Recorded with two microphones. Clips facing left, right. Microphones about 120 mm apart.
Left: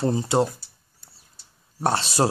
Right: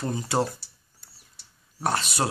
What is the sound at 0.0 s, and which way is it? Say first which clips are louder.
Speech: left 5 dB; 30° left (ahead or behind).